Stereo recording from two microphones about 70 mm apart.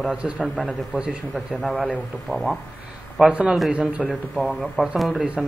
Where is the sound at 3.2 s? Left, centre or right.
Centre.